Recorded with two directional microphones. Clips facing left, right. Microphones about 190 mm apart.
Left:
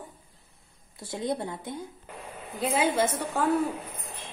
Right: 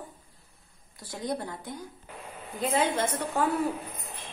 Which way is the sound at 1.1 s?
25° left (ahead or behind).